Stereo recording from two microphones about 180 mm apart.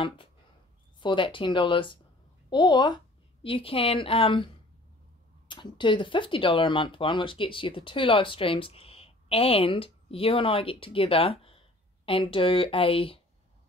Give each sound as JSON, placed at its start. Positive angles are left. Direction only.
{"t": 0.9, "sound": "speech", "side_deg": 25}
{"t": 5.5, "sound": "speech", "side_deg": 25}